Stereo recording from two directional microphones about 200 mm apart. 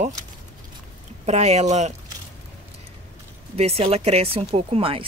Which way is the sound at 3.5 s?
30° right (ahead or behind).